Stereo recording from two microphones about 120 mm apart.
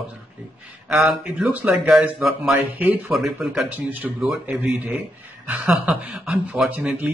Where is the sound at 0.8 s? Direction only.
5° right (ahead or behind).